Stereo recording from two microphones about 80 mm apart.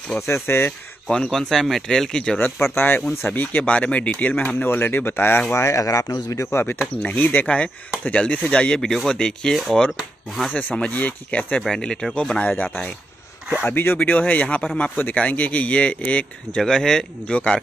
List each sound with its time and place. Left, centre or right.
0.3 s speech: left
1.0 s speech: centre
2.3 s speech: left
6.3 s speech: left; by 9.6 s centre
9.8 s speech: centre
10.5 s speech: centre
13.7 s speech: left
16.6 s speech: centre